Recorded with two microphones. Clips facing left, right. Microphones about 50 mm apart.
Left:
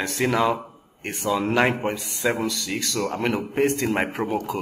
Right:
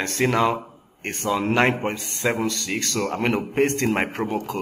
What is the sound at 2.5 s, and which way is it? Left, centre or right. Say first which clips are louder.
Speech: right 1 dB; centre.